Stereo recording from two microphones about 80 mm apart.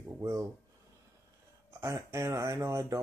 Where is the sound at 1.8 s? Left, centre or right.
Right.